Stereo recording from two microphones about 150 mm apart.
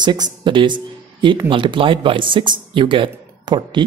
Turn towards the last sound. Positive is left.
turn(degrees=-30)  # may be behind; listen again after turning